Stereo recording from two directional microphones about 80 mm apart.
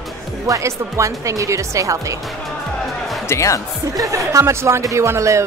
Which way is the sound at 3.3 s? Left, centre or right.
Left.